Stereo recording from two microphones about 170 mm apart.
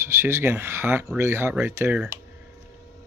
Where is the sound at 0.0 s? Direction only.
15° right (ahead or behind).